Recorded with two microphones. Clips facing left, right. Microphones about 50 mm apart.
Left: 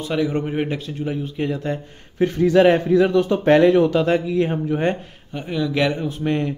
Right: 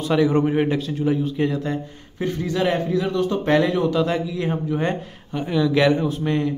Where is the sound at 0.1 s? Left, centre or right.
Centre.